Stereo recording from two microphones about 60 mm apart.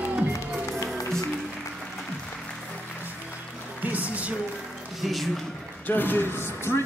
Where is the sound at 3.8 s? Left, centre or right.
Right.